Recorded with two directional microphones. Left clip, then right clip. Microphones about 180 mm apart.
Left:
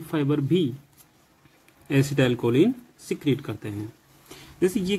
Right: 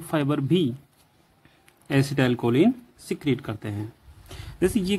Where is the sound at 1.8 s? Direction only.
30° right (ahead or behind).